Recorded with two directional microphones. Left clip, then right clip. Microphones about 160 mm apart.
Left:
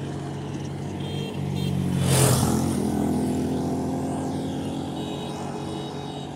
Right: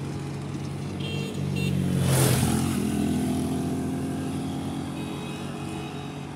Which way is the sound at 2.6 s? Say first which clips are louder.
Left 2 dB; 20° right (ahead or behind).